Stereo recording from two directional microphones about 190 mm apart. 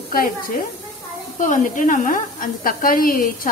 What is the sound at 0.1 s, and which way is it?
Speech, 45° left (ahead or behind).